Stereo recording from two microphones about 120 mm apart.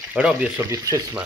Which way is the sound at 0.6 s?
25° right (ahead or behind).